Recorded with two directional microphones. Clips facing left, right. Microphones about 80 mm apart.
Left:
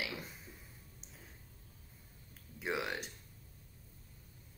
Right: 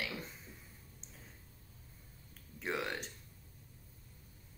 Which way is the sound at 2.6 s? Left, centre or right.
Centre.